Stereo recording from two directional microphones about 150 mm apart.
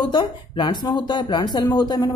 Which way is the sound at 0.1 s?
30° left (ahead or behind).